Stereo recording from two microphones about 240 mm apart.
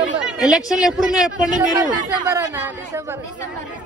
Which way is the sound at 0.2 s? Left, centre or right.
Centre.